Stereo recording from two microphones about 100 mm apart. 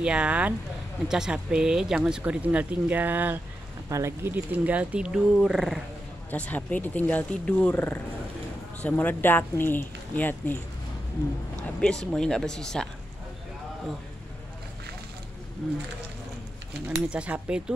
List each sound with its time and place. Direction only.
0.0 s speech: 10° right (ahead or behind)
6.3 s speech: 15° left (ahead or behind)
11.8 s speech: 5° left (ahead or behind)
15.6 s speech: 5° left (ahead or behind)
17.1 s speech: 10° right (ahead or behind)